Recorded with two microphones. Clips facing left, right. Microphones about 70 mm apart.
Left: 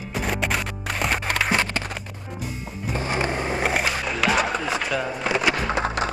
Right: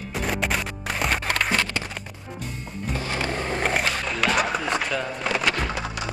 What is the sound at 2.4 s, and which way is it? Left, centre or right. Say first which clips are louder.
Music: left 1 dB; centre.